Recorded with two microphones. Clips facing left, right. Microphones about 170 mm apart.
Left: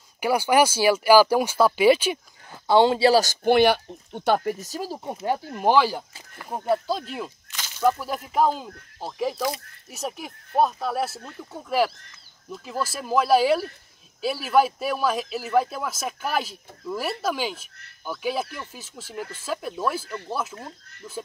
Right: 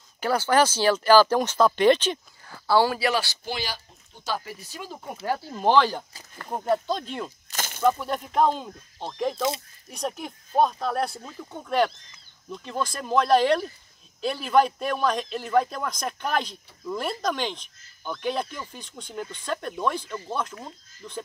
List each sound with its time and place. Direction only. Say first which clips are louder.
0.2 s speech: left 2 dB; 10° left (ahead or behind)
2.5 s speech: left 3 dB; 20° left (ahead or behind)
3.2 s a man's voice: left 12 dB; 50° left (ahead or behind); by 7.3 s 5° left (ahead or behind)
7.5 s a sound: right 6 dB; 50° right (ahead or behind)
8.0 s a man's voice: even; 5° left (ahead or behind)